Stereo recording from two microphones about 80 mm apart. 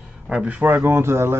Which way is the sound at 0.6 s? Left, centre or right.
Right.